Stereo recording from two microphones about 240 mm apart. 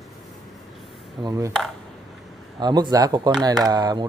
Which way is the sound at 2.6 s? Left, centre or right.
Centre.